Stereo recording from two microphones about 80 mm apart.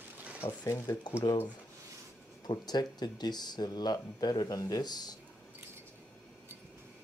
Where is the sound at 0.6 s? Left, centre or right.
Left.